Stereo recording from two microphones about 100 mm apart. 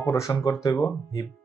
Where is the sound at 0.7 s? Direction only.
20° left (ahead or behind).